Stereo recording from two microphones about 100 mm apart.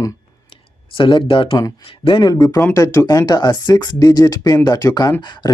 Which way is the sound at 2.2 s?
40° left (ahead or behind).